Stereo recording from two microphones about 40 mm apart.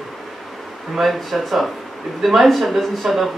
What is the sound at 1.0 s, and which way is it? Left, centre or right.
Speech, centre.